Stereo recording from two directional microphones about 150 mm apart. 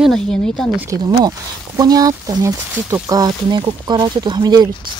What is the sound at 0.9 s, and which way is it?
Speech, 25° right (ahead or behind).